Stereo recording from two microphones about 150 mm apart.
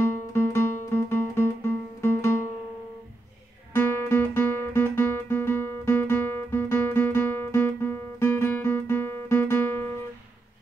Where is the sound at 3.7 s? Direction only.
15° left (ahead or behind).